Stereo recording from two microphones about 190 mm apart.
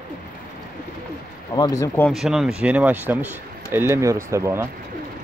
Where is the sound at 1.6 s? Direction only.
20° left (ahead or behind).